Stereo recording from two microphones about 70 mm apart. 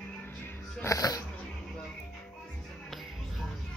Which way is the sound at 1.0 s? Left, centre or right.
Left.